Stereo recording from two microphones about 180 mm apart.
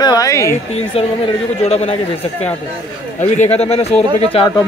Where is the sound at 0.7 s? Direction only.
35° left (ahead or behind).